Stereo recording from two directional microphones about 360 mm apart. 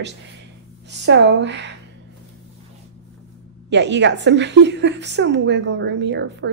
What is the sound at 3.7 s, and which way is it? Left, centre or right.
A woman's voice, right.